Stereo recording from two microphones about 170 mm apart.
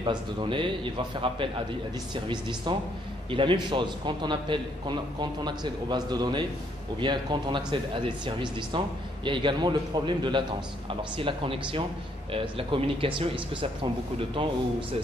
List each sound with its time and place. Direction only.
0.0 s a man's voice: 30° right (ahead or behind)